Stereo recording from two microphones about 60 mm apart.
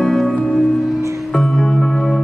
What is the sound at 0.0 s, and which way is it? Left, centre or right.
Music, centre.